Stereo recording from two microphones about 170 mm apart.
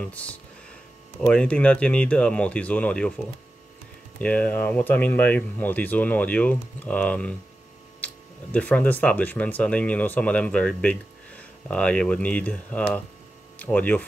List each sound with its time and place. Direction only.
0.0 s speech: 10° left (ahead or behind)
4.2 s speech: 10° left (ahead or behind)